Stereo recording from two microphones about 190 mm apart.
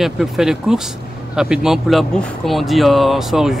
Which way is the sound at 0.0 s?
Centre (ahead or behind).